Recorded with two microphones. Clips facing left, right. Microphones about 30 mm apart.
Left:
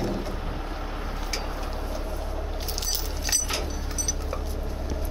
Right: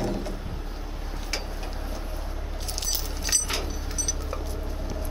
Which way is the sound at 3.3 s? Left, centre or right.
Centre.